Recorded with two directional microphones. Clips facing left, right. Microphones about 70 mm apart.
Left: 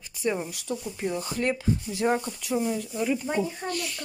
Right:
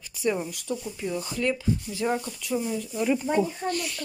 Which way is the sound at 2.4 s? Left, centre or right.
Left.